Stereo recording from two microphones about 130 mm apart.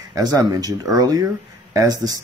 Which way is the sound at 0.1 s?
30° right (ahead or behind).